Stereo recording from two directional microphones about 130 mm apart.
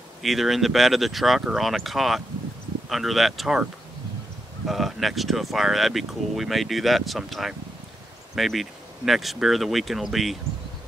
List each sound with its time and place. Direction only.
0.2 s speech: centre (ahead or behind)
4.6 s speech: centre (ahead or behind)